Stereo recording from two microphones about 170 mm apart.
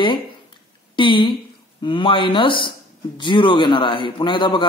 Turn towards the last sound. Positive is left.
turn(degrees=30)  # may be behind; listen again after turning